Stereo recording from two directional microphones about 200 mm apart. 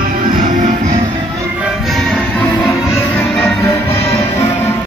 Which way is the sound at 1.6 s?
Centre (ahead or behind).